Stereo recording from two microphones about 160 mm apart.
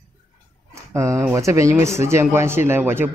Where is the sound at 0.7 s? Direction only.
20° right (ahead or behind).